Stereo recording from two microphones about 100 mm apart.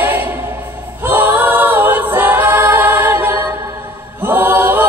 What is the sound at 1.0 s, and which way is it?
A capella, 20° right (ahead or behind).